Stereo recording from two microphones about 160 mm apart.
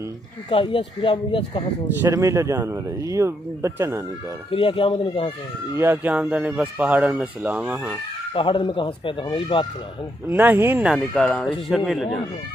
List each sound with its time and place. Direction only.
0.5 s speech: 35° left (ahead or behind)
2.0 s speech: 20° right (ahead or behind)
4.5 s speech: 35° left (ahead or behind)
5.8 s speech: 10° right (ahead or behind)
8.3 s speech: 30° left (ahead or behind)
10.3 s speech: 10° right (ahead or behind)